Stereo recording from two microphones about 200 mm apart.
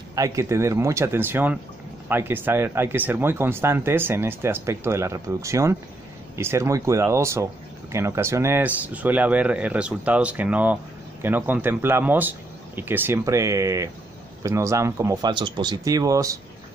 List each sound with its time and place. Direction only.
0.1 s speech: 15° right (ahead or behind)